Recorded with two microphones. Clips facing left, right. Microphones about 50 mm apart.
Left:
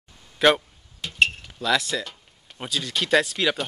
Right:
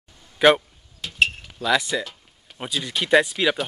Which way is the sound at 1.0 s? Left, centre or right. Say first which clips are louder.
Even; centre.